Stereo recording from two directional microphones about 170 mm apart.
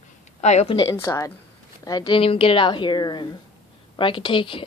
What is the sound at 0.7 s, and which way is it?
Speech, 25° left (ahead or behind).